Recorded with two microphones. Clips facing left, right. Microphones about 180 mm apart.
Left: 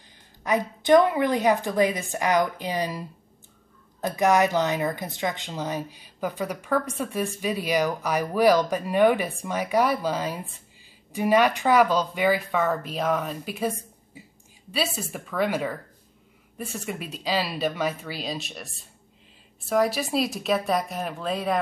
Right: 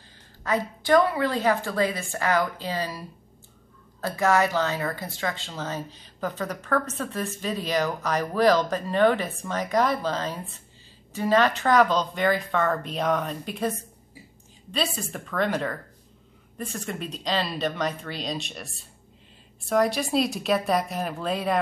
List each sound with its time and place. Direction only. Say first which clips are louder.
0.4 s speech: left 1 dB; 15° left (ahead or behind); by 21.5 s centre (ahead or behind)